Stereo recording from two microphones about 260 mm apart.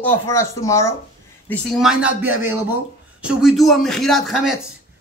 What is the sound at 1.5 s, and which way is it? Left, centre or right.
A man's voice, centre.